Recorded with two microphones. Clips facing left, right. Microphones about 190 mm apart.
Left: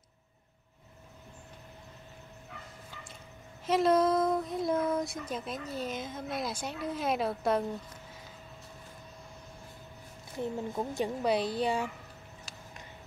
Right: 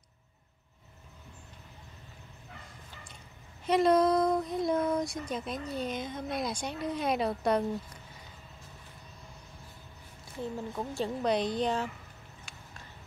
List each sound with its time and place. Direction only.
3.6 s speech: centre (ahead or behind)
10.4 s a woman's voice: 20° left (ahead or behind)
11.2 s a woman's voice: 5° left (ahead or behind)